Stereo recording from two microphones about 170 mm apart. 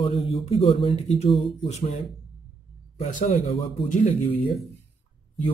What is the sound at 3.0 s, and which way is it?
Speech, 45° left (ahead or behind).